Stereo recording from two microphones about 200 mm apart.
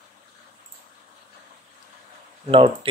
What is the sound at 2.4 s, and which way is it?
Speech, 30° right (ahead or behind).